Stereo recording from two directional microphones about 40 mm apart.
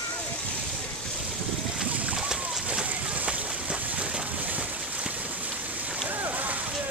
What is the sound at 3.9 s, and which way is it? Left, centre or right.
Boat, right.